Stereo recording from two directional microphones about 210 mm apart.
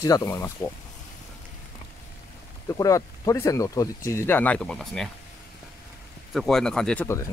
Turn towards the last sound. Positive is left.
turn(degrees=10)  # may be behind; listen again after turning